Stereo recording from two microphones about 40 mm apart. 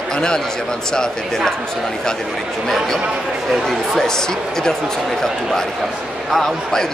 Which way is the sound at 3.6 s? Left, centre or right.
Centre.